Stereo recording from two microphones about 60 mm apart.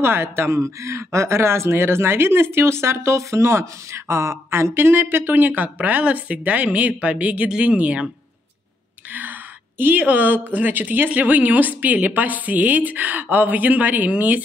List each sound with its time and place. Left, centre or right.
0.0 s speech: right
9.1 s a woman's voice: right